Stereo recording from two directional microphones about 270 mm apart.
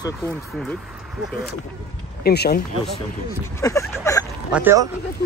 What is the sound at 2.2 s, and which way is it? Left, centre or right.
Speech, left.